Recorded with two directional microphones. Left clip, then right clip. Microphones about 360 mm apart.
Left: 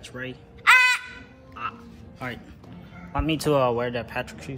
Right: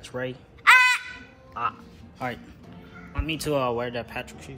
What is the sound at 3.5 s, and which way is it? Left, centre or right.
Speech, centre.